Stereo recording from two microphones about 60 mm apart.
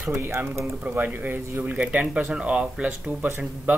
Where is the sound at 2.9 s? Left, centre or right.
Right.